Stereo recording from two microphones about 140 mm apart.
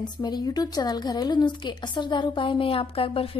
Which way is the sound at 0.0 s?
30° left (ahead or behind).